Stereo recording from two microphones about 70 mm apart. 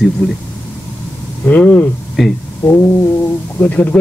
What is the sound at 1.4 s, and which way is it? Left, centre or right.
Speech, left.